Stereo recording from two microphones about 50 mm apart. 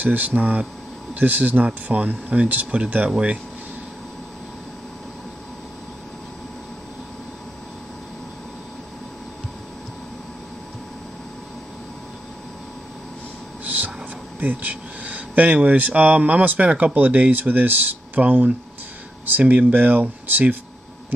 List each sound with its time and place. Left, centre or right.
0.0 s speech: right
13.7 s a sound: right
14.4 s speech: right